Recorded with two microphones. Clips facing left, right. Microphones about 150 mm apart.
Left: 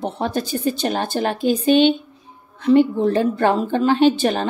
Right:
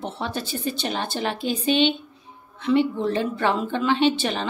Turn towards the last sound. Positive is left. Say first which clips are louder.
# left 6 dB
turn(degrees=45)  # may be behind; listen again after turning